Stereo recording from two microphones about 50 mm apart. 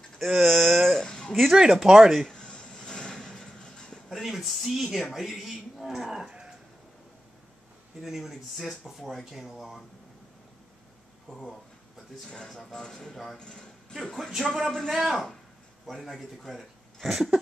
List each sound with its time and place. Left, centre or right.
0.4 s a sound: centre
1.5 s speech: centre
2.2 s a sound: centre
4.1 s speech: centre
8.0 s speech: centre
11.2 s speech: centre
13.1 s speech: centre
13.4 s speech: centre
14.1 s speech: centre
14.5 s speech: centre
14.9 s speech: centre